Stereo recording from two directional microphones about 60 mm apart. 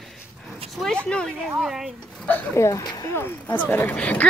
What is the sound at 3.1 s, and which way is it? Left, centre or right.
Speech, left.